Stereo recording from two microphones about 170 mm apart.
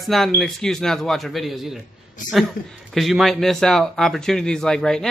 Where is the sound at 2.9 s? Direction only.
Centre (ahead or behind).